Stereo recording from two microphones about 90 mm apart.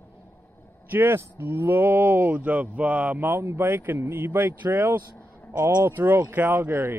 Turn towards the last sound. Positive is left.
turn(degrees=-25)  # may be behind; listen again after turning